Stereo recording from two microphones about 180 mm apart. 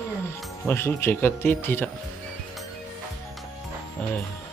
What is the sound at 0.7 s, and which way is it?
Speech, 15° left (ahead or behind).